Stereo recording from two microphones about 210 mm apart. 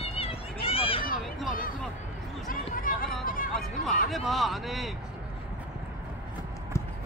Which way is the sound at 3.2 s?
40° left (ahead or behind).